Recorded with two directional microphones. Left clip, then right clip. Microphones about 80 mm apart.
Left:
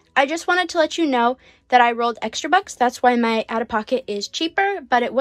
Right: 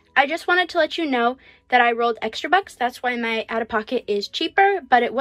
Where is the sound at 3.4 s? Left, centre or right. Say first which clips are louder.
Left 1 dB; left.